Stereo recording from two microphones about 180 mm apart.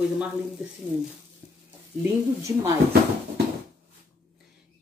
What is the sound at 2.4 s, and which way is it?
Speech, 15° right (ahead or behind).